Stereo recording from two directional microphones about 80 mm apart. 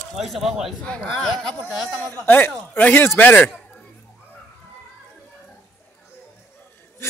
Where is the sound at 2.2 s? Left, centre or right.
Left.